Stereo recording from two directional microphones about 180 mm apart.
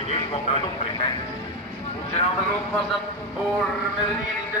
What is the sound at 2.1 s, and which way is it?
Speech, 35° left (ahead or behind).